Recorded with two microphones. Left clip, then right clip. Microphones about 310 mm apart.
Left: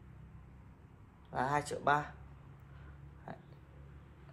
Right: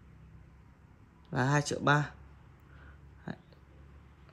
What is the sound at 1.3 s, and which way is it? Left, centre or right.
Speech, right.